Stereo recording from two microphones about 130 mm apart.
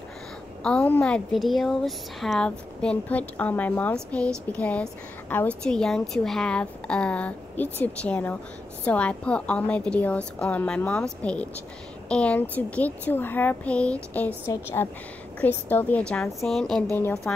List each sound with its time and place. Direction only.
0.7 s a woman's voice: 10° left (ahead or behind)
16.9 s a woman's voice: 15° left (ahead or behind)